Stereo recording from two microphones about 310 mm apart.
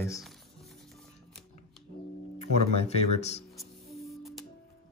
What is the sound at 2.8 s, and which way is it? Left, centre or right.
Speech, left.